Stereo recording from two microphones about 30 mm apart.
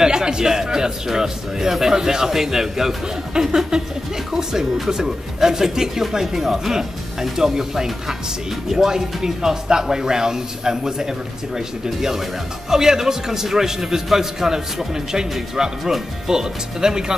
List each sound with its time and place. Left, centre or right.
0.0 s speech: right